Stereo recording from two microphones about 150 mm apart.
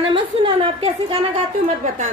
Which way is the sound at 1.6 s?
60° right (ahead or behind).